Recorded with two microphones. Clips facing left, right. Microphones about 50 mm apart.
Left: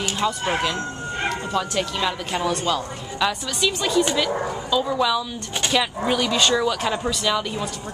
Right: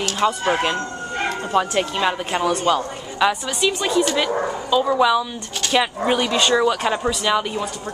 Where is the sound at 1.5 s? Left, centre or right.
Right.